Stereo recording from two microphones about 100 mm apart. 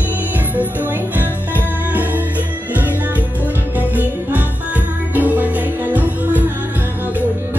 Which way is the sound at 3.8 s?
15° right (ahead or behind).